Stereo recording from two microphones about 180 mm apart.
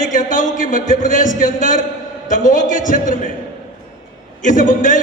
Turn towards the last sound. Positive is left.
turn(degrees=45)  # may be behind; listen again after turning